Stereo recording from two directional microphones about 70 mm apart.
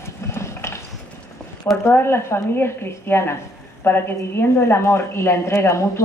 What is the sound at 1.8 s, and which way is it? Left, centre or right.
A woman's voice, left.